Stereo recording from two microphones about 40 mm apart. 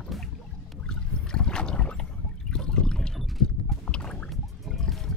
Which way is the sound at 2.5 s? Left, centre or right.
Centre.